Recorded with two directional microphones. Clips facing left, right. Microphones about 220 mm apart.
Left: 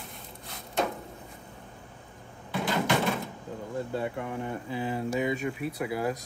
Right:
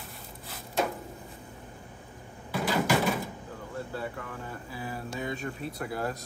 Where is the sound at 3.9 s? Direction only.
20° left (ahead or behind).